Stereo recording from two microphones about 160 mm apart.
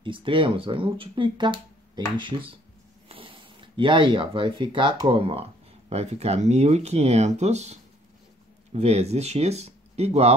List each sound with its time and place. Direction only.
0.0 s speech: 30° right (ahead or behind)